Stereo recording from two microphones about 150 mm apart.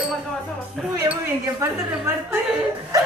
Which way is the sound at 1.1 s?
15° right (ahead or behind).